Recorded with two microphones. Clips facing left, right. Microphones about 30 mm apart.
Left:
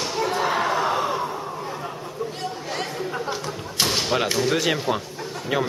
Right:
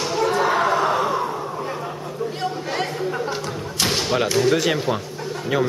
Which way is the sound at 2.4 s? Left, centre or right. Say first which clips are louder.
Right 4 dB; centre.